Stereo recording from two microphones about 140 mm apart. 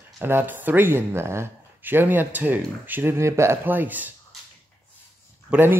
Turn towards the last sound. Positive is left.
turn(degrees=-15)  # may be behind; listen again after turning